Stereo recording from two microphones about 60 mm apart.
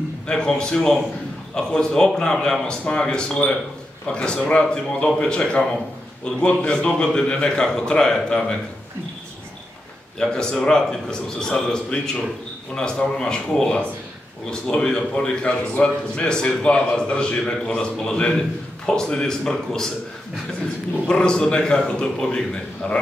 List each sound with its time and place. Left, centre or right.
0.3 s a man's voice: centre
10.2 s a man's voice: centre
21.1 s a man's voice: centre